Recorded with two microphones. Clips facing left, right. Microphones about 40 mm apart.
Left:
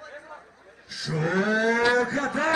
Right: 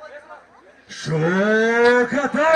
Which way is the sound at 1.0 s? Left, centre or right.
Right.